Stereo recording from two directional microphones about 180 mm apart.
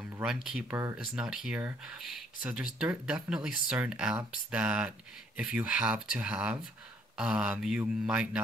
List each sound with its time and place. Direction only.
0.2 s speech: 5° right (ahead or behind)
0.7 s mantra: 15° right (ahead or behind)
1.0 s speech: 5° right (ahead or behind)
7.2 s mantra: 5° right (ahead or behind)